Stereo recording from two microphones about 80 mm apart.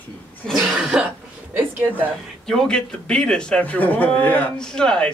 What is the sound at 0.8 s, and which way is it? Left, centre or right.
Cough, centre.